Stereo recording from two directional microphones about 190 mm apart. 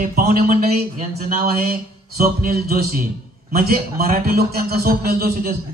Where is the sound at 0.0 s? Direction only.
50° right (ahead or behind).